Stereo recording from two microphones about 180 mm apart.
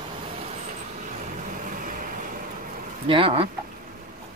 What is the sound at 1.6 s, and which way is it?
Vehicle, 50° right (ahead or behind).